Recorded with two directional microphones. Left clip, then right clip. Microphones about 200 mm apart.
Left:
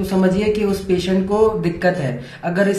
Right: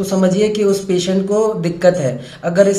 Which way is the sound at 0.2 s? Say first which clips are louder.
Right 3 dB; 45° right (ahead or behind).